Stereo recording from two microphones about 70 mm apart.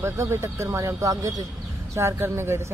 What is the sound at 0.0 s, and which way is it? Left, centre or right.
Speech, right.